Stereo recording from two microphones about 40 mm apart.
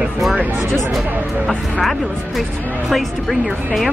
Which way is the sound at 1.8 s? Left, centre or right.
Centre.